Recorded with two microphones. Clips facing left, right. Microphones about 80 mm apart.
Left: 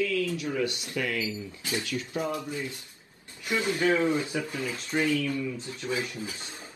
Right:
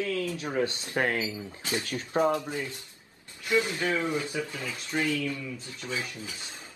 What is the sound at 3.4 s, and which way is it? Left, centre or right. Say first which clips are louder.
Speech: left 1 dB; left.